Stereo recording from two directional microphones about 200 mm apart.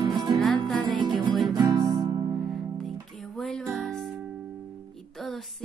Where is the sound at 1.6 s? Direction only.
20° right (ahead or behind).